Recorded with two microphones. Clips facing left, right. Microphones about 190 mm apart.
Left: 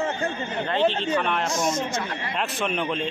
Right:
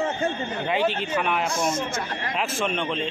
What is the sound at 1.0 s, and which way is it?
Speech, 5° right (ahead or behind).